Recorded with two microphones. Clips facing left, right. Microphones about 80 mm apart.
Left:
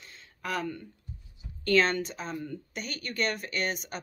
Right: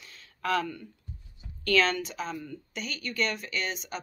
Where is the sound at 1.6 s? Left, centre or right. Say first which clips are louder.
Left 1 dB; left.